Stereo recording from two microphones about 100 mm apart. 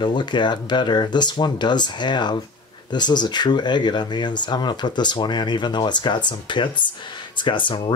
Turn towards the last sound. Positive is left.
turn(degrees=55)  # may be behind; listen again after turning